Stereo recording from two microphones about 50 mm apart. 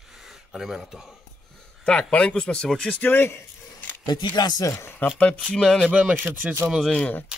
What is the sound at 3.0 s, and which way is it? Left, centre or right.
Speech, left.